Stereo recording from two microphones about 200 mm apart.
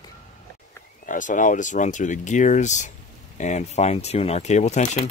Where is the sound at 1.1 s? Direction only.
40° left (ahead or behind).